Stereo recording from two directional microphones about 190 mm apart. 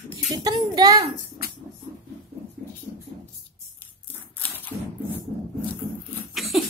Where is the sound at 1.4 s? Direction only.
55° left (ahead or behind).